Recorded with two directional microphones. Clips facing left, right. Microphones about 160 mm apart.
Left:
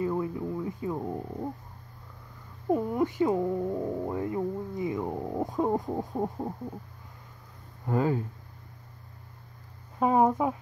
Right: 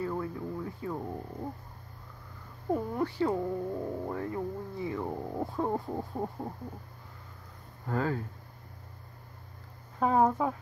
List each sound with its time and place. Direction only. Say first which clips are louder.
0.0 s speech: left 4 dB; 15° left (ahead or behind)
2.7 s speech: left 4 dB; 15° left (ahead or behind)
7.8 s speech: left 4 dB; 15° left (ahead or behind)
9.9 s speech: left 2 dB; 15° left (ahead or behind)